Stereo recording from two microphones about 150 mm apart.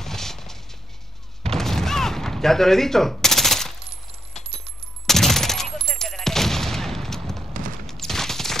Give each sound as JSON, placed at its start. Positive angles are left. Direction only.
{"t": 0.0, "sound": "mechanisms", "side_deg": 5}
{"t": 1.4, "sound": "a sound", "side_deg": 0}
{"t": 5.0, "sound": "fusillade", "side_deg": 0}